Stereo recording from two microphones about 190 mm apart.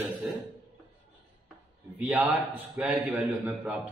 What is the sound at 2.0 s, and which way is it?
A man's voice, 10° right (ahead or behind).